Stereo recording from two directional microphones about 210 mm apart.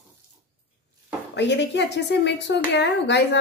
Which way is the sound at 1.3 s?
55° left (ahead or behind).